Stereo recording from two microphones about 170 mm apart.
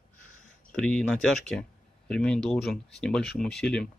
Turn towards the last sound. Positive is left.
turn(degrees=5)  # may be behind; listen again after turning